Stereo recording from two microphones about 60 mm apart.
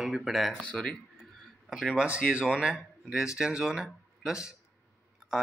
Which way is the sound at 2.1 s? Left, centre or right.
Centre.